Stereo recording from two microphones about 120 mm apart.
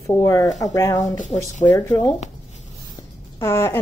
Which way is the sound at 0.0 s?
25° left (ahead or behind).